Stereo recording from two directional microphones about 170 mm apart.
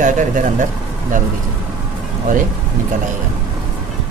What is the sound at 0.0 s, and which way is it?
Speech, 50° right (ahead or behind).